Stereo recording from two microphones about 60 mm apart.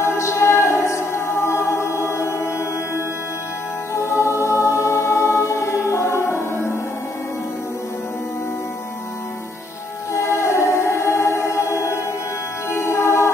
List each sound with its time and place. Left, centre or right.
0.0 s music: left
3.9 s music: left
10.1 s music: left